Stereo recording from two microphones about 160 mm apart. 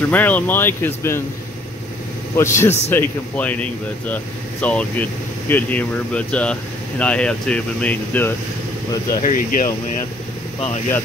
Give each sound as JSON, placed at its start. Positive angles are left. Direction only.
{"t": 0.1, "sound": "speech", "side_deg": 10}
{"t": 2.3, "sound": "speech", "side_deg": 15}
{"t": 9.2, "sound": "speech", "side_deg": 55}